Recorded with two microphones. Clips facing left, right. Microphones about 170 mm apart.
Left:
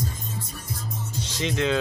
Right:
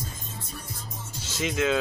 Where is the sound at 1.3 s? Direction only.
5° right (ahead or behind).